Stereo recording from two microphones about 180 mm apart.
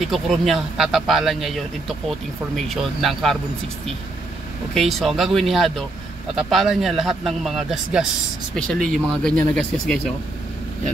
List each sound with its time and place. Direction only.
0.0 s speech: centre (ahead or behind)
4.7 s speech: centre (ahead or behind)